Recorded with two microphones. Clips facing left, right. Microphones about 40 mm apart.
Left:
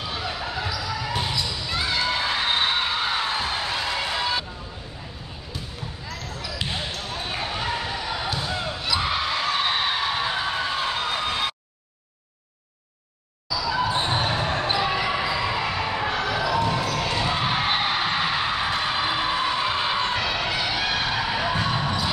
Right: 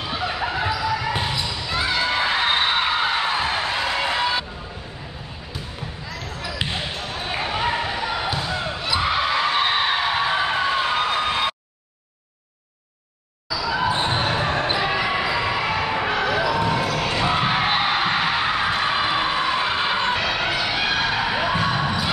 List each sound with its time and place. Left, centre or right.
0.0 s basketball bounce: centre
6.4 s basketball bounce: right
13.5 s basketball bounce: right
16.9 s a sound: centre
20.7 s music: right